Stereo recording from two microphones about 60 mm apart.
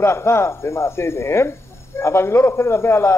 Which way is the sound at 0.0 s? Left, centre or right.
Left.